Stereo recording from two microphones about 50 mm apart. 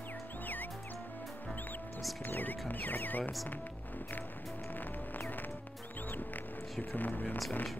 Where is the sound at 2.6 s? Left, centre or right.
Left.